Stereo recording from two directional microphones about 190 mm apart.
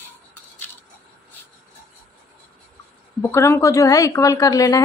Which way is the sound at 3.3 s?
15° left (ahead or behind).